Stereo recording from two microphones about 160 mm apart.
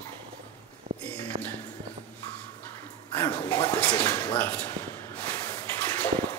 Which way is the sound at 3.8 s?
10° left (ahead or behind).